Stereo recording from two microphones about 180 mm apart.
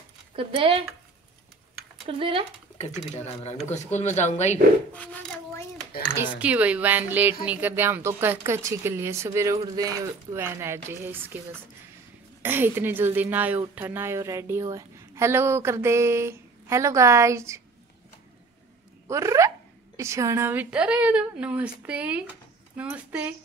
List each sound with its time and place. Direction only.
0.4 s speech: 30° right (ahead or behind)
2.0 s speech: 30° right (ahead or behind)
3.7 s speech: 40° left (ahead or behind)
4.9 s a sound: 10° left (ahead or behind)
6.3 s a woman's voice: 10° right (ahead or behind)
12.4 s a woman's voice: 10° right (ahead or behind)
19.0 s a woman's voice: 15° right (ahead or behind)